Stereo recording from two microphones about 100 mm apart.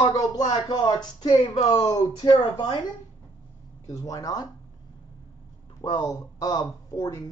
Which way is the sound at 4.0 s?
35° left (ahead or behind).